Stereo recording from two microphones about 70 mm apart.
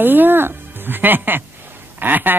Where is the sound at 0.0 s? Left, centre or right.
Right.